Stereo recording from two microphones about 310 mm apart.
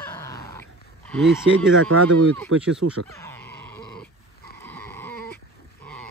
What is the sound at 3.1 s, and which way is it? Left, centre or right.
Speech, centre.